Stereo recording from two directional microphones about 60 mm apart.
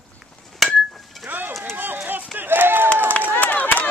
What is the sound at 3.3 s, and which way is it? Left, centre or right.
Chop, left.